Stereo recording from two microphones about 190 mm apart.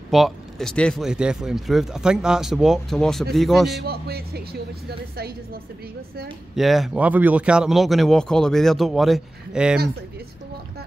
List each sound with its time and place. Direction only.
0.1 s a man's voice: centre (ahead or behind)
3.8 s a woman's voice: 55° right (ahead or behind)
6.5 s a man's voice: centre (ahead or behind)